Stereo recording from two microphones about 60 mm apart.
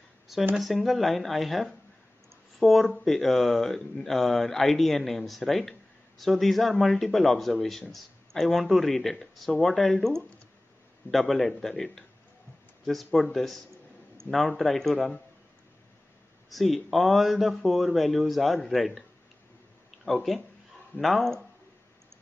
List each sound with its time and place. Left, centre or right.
0.6 s speech: centre
14.2 s speech: left
14.6 s speech: centre
16.4 s speech: centre
21.0 s speech: centre